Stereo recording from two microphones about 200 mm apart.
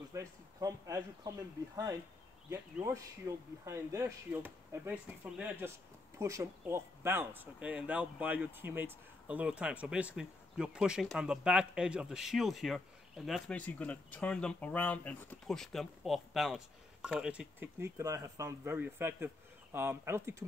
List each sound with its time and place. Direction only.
0.1 s speech: 15° right (ahead or behind)
2.5 s speech: 15° right (ahead or behind)